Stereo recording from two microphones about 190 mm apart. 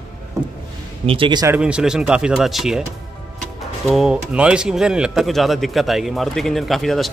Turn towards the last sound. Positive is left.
turn(degrees=0)  # may be behind; listen again after turning